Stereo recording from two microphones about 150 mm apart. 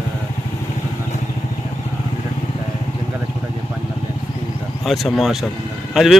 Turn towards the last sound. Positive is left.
turn(degrees=0)  # may be behind; listen again after turning